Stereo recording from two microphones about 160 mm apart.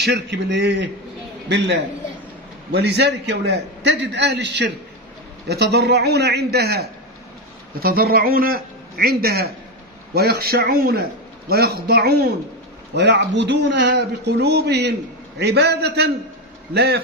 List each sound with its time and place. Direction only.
0.0 s a man's voice: 90° right
2.7 s a man's voice: 90° right
7.8 s a man's voice: 70° right (ahead or behind)